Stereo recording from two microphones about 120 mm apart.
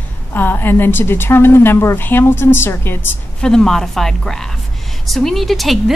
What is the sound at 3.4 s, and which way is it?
A woman's voice, 5° left (ahead or behind).